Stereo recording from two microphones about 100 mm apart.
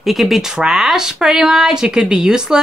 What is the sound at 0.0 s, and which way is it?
A woman's voice, centre (ahead or behind).